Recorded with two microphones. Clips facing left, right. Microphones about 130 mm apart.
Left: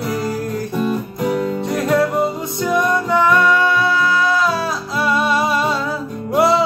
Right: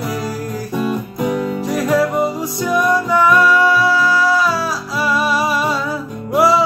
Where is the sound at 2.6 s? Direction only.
25° left (ahead or behind).